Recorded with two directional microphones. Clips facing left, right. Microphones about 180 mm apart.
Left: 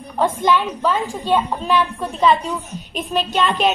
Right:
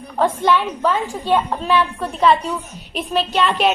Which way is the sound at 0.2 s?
10° left (ahead or behind).